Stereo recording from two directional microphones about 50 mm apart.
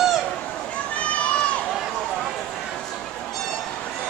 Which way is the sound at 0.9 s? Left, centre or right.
Left.